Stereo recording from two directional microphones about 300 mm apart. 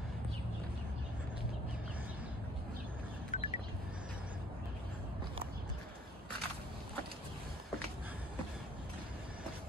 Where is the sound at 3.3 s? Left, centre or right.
Left.